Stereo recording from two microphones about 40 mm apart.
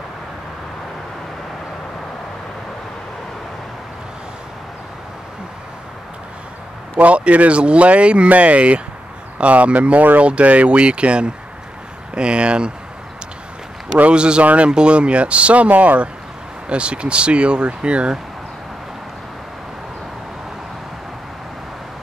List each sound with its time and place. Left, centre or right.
7.0 s speech: right
14.1 s speech: right
14.4 s speech: right
14.7 s speech: right
16.6 s speech: right